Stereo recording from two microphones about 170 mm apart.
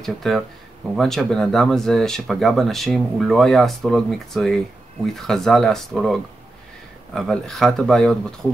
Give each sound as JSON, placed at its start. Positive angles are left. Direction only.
{"t": 0.0, "sound": "speech", "side_deg": 0}